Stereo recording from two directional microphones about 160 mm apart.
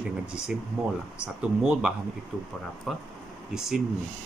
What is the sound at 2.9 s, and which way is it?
Speech, centre (ahead or behind).